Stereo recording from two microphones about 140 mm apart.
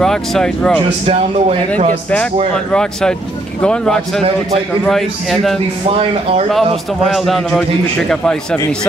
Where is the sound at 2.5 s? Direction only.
5° left (ahead or behind).